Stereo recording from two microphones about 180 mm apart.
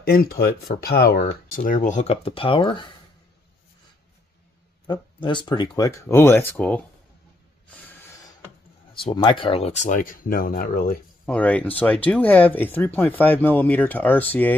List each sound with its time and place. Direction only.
0.0 s speech: 55° left (ahead or behind); by 2.9 s 25° left (ahead or behind)
4.8 s speech: 25° left (ahead or behind); by 6.8 s 10° left (ahead or behind)
8.9 s speech: 25° left (ahead or behind); by 11.0 s 55° left (ahead or behind)
11.2 s speech: 5° left (ahead or behind)